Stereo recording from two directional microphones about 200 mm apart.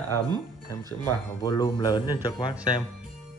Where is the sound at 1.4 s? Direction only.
20° left (ahead or behind).